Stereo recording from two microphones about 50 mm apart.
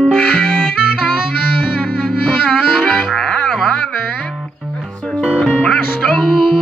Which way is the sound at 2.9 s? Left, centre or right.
Centre.